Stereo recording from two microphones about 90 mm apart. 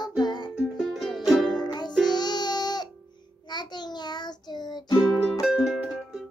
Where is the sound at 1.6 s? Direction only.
55° left (ahead or behind).